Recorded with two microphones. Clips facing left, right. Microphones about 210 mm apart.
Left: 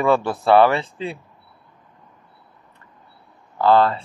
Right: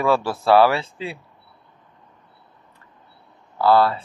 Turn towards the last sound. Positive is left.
turn(degrees=-5)  # may be behind; listen again after turning